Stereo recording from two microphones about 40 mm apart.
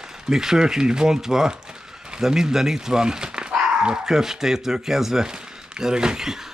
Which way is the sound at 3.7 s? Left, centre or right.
Right.